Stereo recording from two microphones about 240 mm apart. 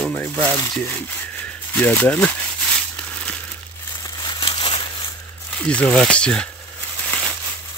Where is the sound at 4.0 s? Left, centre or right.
Centre.